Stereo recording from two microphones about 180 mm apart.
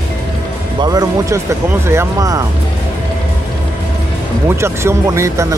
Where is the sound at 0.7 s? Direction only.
20° right (ahead or behind).